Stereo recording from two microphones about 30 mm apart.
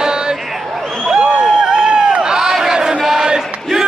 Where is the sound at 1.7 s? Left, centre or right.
Right.